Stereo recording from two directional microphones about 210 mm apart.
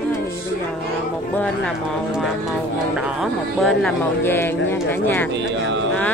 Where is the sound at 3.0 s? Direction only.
Centre (ahead or behind).